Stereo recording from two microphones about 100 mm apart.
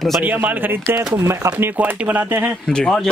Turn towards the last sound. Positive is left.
turn(degrees=5)  # may be behind; listen again after turning